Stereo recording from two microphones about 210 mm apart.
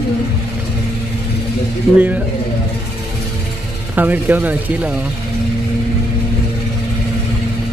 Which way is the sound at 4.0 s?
10° right (ahead or behind).